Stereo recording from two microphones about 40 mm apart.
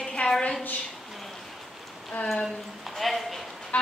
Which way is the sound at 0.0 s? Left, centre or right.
Left.